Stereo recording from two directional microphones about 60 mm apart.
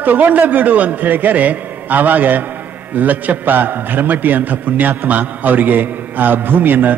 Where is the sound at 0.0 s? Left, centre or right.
Right.